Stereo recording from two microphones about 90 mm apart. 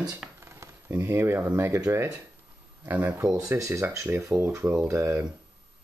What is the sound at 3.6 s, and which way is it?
Speech, 35° right (ahead or behind).